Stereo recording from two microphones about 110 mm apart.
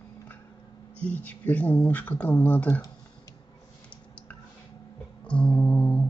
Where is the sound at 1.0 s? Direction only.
15° left (ahead or behind).